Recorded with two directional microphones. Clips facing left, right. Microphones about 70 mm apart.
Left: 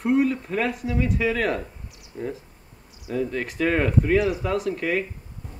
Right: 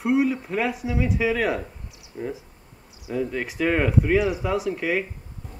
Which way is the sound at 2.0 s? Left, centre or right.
Centre.